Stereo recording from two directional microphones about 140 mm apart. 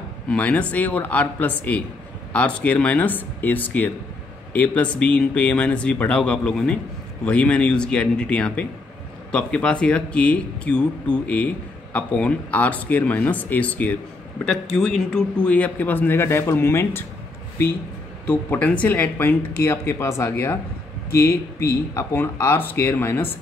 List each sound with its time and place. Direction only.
0.3 s speech: 10° left (ahead or behind)
18.2 s speech: 10° left (ahead or behind)